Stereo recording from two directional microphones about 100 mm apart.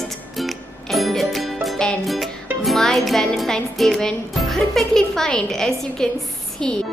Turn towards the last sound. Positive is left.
turn(degrees=5)  # may be behind; listen again after turning